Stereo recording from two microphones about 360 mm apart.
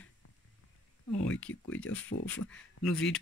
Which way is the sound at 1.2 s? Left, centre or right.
Centre.